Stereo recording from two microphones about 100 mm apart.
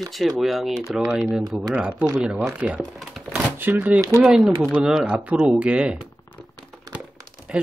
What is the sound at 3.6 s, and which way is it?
Speech, 15° right (ahead or behind).